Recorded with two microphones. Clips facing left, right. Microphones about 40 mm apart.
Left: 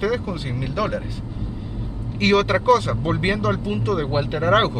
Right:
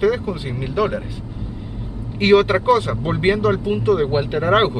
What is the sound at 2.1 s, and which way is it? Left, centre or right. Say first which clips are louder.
Speech: right 4 dB; centre.